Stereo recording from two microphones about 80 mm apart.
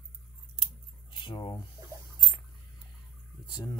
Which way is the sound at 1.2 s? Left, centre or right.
Left.